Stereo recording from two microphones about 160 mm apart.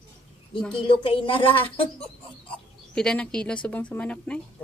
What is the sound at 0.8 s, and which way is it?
Speech, 35° left (ahead or behind).